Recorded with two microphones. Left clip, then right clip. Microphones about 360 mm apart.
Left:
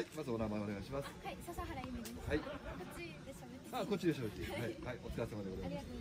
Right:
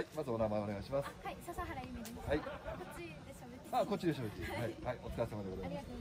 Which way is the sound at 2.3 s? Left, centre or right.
Right.